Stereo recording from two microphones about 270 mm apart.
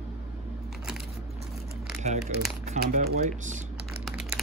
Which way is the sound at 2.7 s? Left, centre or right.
Right.